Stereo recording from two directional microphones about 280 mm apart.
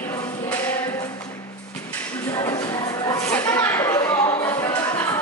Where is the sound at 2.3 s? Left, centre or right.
Centre.